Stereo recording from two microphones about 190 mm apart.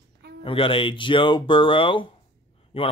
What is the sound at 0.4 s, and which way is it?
Speech, 30° left (ahead or behind).